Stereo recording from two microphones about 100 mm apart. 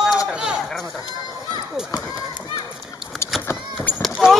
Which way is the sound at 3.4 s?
20° left (ahead or behind).